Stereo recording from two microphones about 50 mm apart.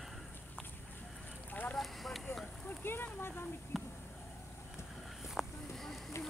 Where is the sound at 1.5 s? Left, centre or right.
Left.